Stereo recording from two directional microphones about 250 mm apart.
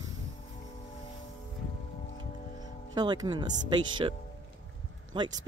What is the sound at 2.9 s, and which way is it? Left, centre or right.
Speech, centre.